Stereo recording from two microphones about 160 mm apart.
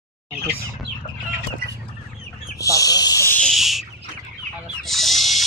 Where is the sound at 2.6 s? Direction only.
20° left (ahead or behind).